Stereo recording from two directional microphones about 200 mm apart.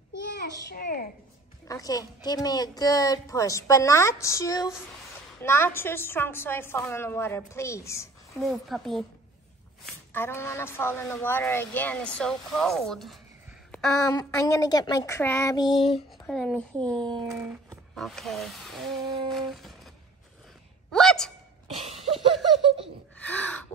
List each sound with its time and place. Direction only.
0.3 s a child's voice: 50° left (ahead or behind)
1.7 s speech: 20° left (ahead or behind)
8.3 s speech: centre (ahead or behind)
10.1 s speech: 10° left (ahead or behind)
13.7 s a sound: 5° left (ahead or behind)
14.1 s speech: 15° left (ahead or behind)
16.3 s speech: centre (ahead or behind)
17.0 s a sound: 20° right (ahead or behind)
17.6 s speech: centre (ahead or behind)
19.2 s a sound: centre (ahead or behind)
20.9 s gasp: centre (ahead or behind)
21.7 s a sound: 30° right (ahead or behind)
22.0 s laughter: centre (ahead or behind)
23.1 s gasp: 10° left (ahead or behind)